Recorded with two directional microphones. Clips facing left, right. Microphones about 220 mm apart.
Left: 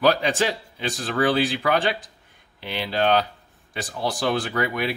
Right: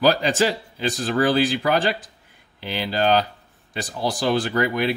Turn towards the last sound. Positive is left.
turn(degrees=0)  # may be behind; listen again after turning